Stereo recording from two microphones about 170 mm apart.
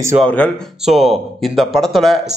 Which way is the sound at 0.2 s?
5° left (ahead or behind).